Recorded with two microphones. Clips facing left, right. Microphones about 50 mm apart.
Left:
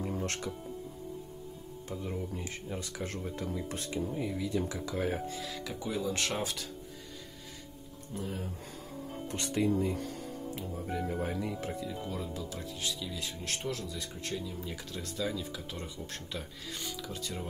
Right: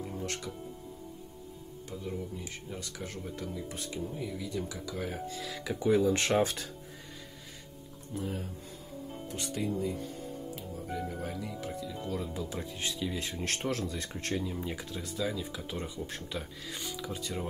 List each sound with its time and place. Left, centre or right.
0.2 s music: left
1.9 s speech: left
3.9 s speech: left
5.3 s speech: centre
5.6 s speech: centre
8.1 s speech: centre
9.3 s speech: left
10.9 s speech: left
11.8 s speech: centre
12.4 s speech: right
14.4 s speech: right
14.9 s speech: centre